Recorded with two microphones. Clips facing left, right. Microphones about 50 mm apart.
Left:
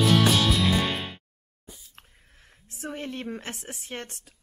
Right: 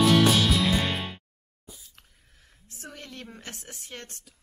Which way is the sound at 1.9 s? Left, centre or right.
Left.